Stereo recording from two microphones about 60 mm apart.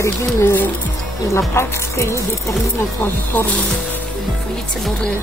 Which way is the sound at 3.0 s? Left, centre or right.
Left.